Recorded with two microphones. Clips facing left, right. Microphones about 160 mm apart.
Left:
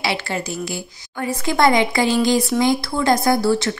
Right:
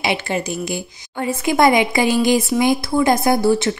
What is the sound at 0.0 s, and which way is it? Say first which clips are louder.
A woman's voice: right 3 dB; 20° right (ahead or behind).